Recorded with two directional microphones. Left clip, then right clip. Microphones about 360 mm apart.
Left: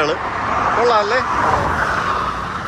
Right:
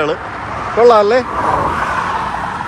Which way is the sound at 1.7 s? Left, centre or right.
Right.